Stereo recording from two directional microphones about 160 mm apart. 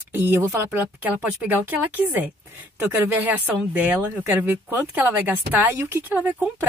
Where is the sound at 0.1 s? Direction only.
15° right (ahead or behind).